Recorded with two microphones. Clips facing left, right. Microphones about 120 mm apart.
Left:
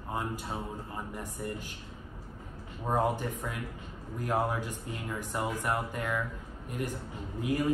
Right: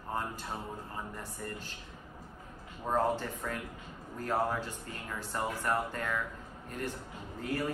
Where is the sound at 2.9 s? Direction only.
10° left (ahead or behind).